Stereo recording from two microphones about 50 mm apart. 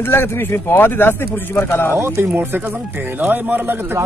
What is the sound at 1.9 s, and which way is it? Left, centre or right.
Speech, right.